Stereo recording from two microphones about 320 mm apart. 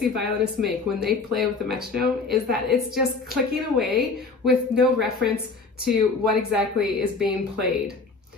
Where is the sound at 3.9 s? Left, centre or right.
Right.